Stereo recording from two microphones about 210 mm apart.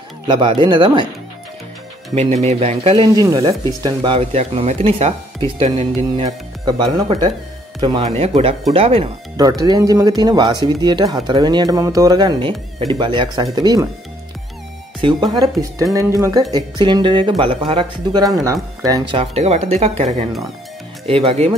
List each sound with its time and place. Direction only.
0.3 s speech: 25° right (ahead or behind)
2.1 s speech: 30° right (ahead or behind)
6.1 s speech: 25° right (ahead or behind)
15.0 s speech: 20° right (ahead or behind)